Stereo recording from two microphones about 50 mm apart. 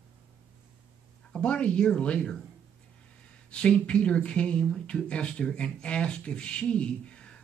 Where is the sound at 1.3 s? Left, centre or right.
Left.